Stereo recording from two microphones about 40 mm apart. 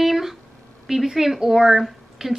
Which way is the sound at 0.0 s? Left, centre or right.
Centre.